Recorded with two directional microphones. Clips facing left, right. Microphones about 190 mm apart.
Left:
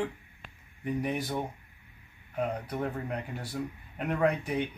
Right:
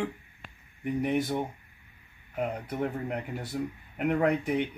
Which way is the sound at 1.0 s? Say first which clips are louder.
Right 6 dB; 20° right (ahead or behind).